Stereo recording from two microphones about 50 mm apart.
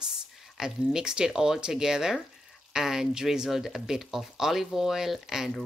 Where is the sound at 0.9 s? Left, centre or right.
Centre.